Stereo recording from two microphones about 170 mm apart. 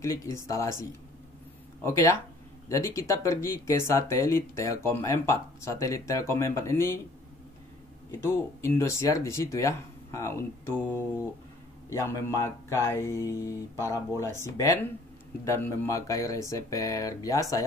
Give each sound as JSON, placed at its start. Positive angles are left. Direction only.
{"t": 0.0, "sound": "speech", "side_deg": 20}
{"t": 8.1, "sound": "speech", "side_deg": 15}